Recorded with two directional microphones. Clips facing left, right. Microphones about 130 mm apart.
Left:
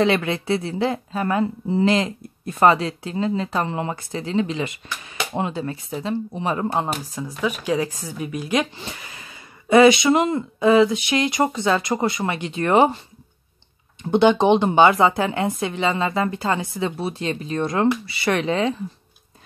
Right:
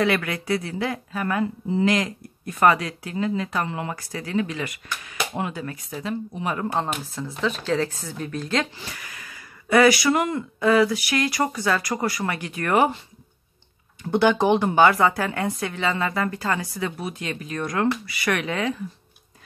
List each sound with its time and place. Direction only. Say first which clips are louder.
0.0 s speech: left 3 dB; 25° left (ahead or behind)
7.2 s speech: even; 10° left (ahead or behind)
14.0 s speech: left 3 dB; 20° left (ahead or behind)